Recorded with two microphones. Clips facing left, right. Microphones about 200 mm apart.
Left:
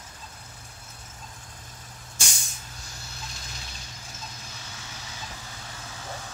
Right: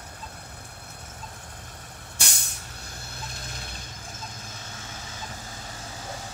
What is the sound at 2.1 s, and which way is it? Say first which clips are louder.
Vehicle: right 1 dB; 60° right (ahead or behind).